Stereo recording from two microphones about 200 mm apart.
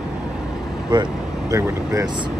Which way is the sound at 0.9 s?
20° right (ahead or behind).